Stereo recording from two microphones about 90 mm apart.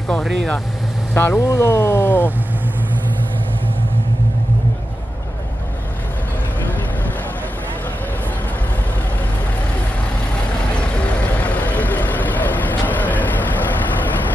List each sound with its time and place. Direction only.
1.1 s speech: 25° left (ahead or behind)
11.3 s vehicle: 15° left (ahead or behind)